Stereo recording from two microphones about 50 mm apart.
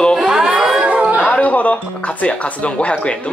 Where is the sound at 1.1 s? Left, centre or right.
Left.